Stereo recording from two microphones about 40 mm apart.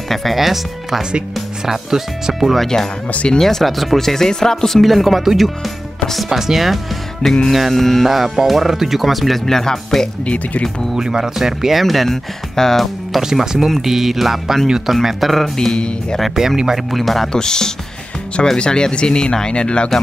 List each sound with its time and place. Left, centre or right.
0.1 s speech: centre
2.6 s speech: centre
4.8 s speech: centre
7.2 s speech: centre
7.5 s speech: centre
9.5 s speech: centre
10.2 s speech: left
11.0 s speech: centre
11.8 s speech: centre
13.2 s speech: centre
15.5 s speech: centre
16.3 s speech: centre
16.9 s speech: centre
17.3 s speech: centre